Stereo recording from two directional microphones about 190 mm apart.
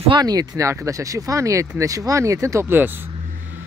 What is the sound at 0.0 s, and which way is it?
Speech, 25° right (ahead or behind).